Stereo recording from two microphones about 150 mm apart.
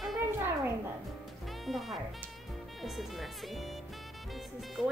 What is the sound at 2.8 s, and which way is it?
Speech, centre (ahead or behind).